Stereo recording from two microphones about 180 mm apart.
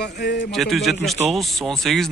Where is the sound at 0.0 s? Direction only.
55° left (ahead or behind).